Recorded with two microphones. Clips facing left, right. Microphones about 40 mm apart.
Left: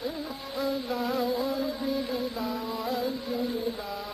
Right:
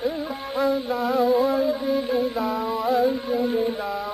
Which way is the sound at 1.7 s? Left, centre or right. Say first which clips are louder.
Right 6 dB; right.